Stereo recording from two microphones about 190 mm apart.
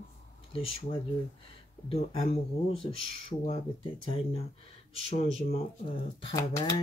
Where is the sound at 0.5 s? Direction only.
30° left (ahead or behind).